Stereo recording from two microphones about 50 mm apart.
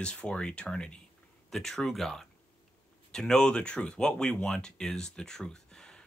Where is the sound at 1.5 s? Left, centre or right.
Centre.